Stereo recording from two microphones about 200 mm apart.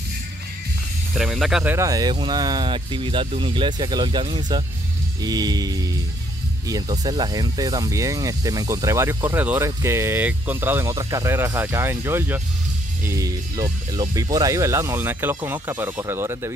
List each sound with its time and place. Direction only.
1.1 s speech: centre (ahead or behind)